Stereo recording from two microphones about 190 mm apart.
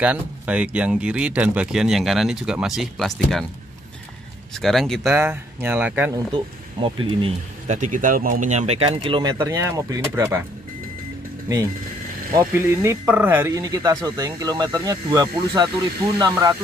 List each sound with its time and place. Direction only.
0.0 s speech: 5° right (ahead or behind)
4.6 s speech: centre (ahead or behind)
5.1 s speech: 10° right (ahead or behind)
6.1 s speech: 25° right (ahead or behind)
12.4 s speech: 15° right (ahead or behind)